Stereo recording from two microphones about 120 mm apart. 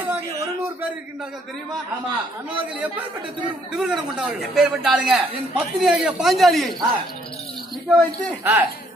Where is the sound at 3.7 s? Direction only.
5° right (ahead or behind).